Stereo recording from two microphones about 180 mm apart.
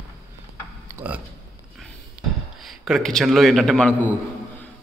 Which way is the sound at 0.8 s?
10° right (ahead or behind).